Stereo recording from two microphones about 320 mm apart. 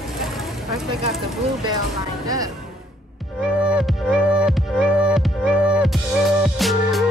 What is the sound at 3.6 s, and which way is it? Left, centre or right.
Music, centre.